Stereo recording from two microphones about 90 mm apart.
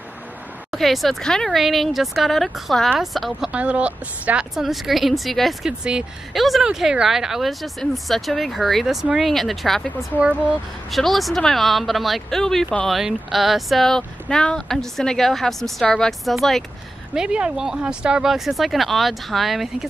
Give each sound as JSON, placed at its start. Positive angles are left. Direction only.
{"t": 0.7, "sound": "speech", "side_deg": 0}
{"t": 10.9, "sound": "speech", "side_deg": 0}
{"t": 17.1, "sound": "speech", "side_deg": -10}